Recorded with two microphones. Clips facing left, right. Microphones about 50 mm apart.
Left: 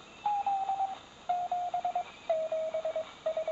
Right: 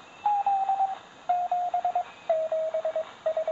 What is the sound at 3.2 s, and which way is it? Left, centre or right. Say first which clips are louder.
Telephone dialing: right 5 dB; right.